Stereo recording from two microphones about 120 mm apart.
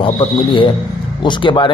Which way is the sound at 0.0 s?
45° left (ahead or behind).